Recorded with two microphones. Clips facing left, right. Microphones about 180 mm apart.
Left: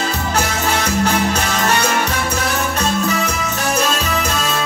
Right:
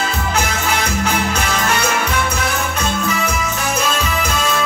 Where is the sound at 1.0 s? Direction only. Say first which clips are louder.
Left 2 dB; 40° left (ahead or behind).